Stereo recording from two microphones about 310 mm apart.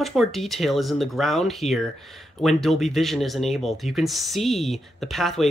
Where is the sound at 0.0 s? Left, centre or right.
Centre.